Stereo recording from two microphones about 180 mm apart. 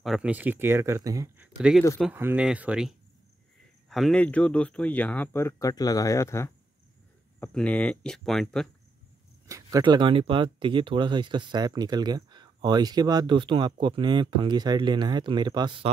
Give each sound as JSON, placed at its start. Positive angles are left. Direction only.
{"t": 0.0, "sound": "speech", "side_deg": -5}
{"t": 1.6, "sound": "speech", "side_deg": 0}
{"t": 9.5, "sound": "speech", "side_deg": -20}